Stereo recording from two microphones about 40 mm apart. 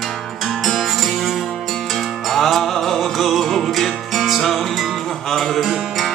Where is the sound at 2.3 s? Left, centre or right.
Centre.